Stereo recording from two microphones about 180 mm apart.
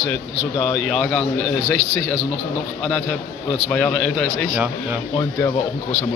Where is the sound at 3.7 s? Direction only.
5° left (ahead or behind).